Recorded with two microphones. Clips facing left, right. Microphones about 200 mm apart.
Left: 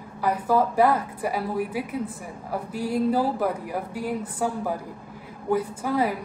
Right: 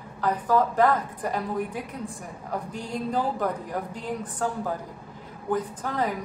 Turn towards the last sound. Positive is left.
turn(degrees=10)  # may be behind; listen again after turning